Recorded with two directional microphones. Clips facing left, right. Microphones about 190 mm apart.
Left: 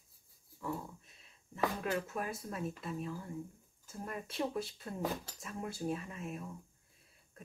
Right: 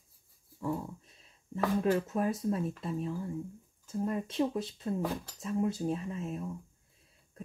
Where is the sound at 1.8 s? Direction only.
25° right (ahead or behind).